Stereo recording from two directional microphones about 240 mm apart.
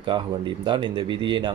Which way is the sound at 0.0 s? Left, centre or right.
Centre.